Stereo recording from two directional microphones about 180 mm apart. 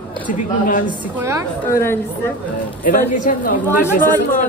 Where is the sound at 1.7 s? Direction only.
15° left (ahead or behind).